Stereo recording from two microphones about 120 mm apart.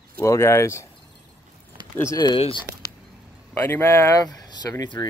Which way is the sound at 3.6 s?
20° left (ahead or behind).